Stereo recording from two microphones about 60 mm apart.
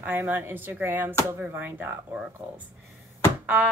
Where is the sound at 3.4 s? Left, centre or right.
Right.